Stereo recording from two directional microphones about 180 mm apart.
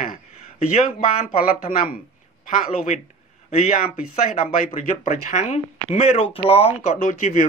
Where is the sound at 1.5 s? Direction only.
55° left (ahead or behind).